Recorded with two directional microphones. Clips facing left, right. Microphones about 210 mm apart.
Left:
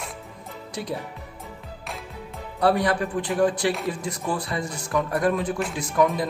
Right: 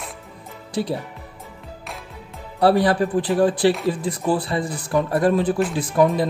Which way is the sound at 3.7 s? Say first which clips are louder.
Right 6 dB; centre (ahead or behind).